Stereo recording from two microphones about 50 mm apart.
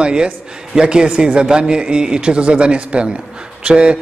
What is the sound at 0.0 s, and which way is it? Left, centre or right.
A man's voice, centre.